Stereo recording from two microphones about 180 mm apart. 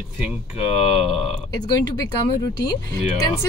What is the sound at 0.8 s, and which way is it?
Speech, 35° left (ahead or behind).